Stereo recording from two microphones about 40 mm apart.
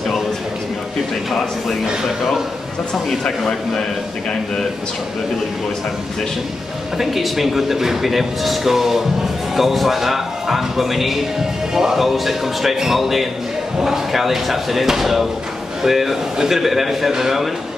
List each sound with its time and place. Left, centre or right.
3.3 s a man's voice: centre
7.0 s speech: centre